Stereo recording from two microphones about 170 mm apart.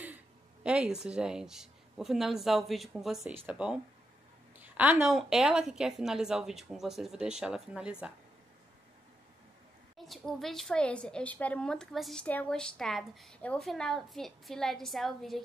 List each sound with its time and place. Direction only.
0.7 s a woman's voice: 5° right (ahead or behind)
9.9 s a woman's voice: centre (ahead or behind)